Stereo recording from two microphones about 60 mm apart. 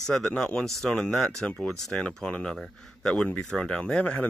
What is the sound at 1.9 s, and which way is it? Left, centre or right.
Speech, centre.